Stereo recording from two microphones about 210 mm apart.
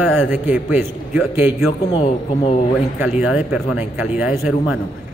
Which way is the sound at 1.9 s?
25° left (ahead or behind).